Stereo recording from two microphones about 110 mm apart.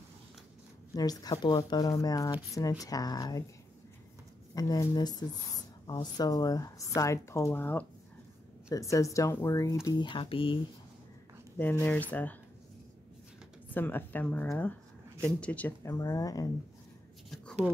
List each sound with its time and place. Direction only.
0.9 s speech: 35° left (ahead or behind)
4.6 s speech: 35° left (ahead or behind); by 7.8 s 15° left (ahead or behind)
8.6 s speech: 30° left (ahead or behind)
9.9 s speech: 45° left (ahead or behind)
11.8 s speech: 15° left (ahead or behind)
13.7 s speech: 15° left (ahead or behind)
15.8 s speech: 30° left (ahead or behind)